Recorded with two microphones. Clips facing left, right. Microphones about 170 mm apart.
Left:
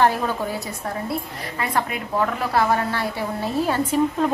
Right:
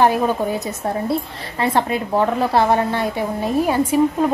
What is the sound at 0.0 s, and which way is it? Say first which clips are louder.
A woman's voice: right 4 dB; 15° right (ahead or behind).